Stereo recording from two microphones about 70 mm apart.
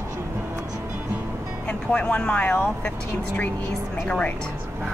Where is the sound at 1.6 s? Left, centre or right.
Centre.